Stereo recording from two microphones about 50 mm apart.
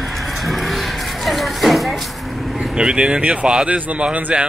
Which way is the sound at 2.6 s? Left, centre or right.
Centre.